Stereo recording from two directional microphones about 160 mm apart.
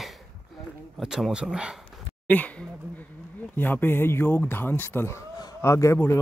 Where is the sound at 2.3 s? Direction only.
10° left (ahead or behind).